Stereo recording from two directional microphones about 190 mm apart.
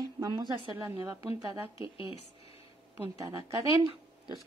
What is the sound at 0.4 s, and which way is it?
A woman's voice, 15° right (ahead or behind).